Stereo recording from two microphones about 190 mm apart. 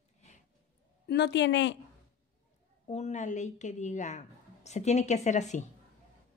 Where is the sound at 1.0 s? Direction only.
65° left (ahead or behind).